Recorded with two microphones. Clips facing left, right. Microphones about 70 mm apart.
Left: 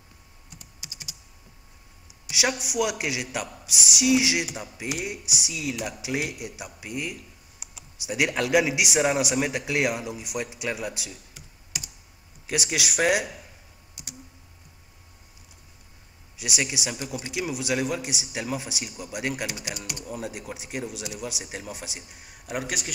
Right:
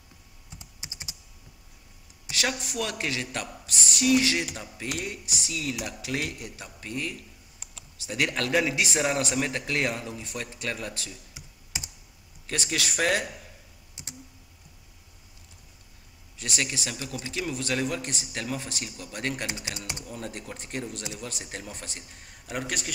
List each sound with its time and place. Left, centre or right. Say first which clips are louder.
0.5 s computer keyboard: right 1 dB; right
2.3 s a man's voice: left 4 dB; centre
11.3 s computer keyboard: right 1 dB; right
12.4 s a man's voice: left 2 dB; centre
14.0 s computer keyboard: even; right
16.3 s a man's voice: left 2 dB; centre
19.4 s speech: left 2 dB; right
20.1 s a man's voice: left 7 dB; centre